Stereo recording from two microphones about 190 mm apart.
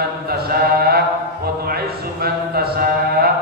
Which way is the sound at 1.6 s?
55° right (ahead or behind).